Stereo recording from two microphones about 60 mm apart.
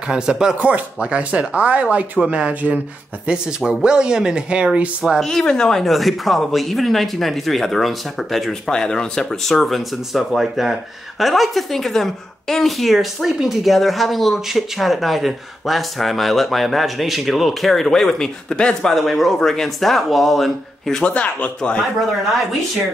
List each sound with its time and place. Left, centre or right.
0.1 s speech: centre
5.2 s speech: centre
21.0 s speech: left